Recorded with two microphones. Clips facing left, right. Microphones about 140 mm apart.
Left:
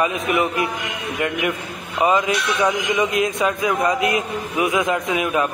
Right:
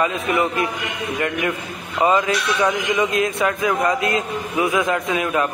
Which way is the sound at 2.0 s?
15° left (ahead or behind).